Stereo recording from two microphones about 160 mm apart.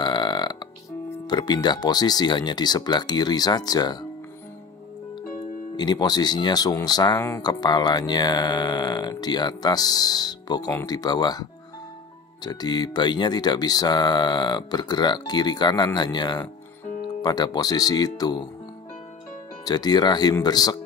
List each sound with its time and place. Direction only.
0.0 s burping: 30° left (ahead or behind)
1.2 s speech: 25° left (ahead or behind)
5.8 s speech: 25° left (ahead or behind)
12.4 s speech: 25° left (ahead or behind)
19.6 s speech: 25° left (ahead or behind)